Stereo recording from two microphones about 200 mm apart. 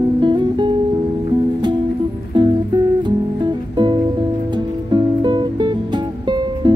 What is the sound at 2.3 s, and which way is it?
Music, 20° right (ahead or behind).